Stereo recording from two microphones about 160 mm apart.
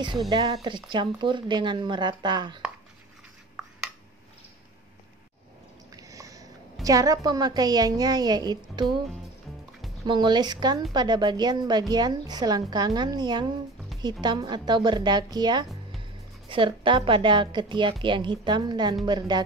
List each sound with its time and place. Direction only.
0.3 s speech: 30° right (ahead or behind)
5.9 s a woman's voice: 20° right (ahead or behind)
10.0 s a woman's voice: 25° right (ahead or behind)